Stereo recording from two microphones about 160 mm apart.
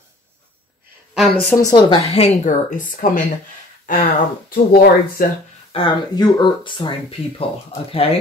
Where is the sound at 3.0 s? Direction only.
60° left (ahead or behind).